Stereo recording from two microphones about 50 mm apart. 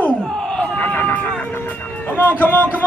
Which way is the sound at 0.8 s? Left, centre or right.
Left.